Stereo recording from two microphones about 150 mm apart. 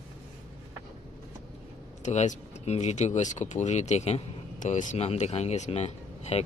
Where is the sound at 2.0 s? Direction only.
50° left (ahead or behind).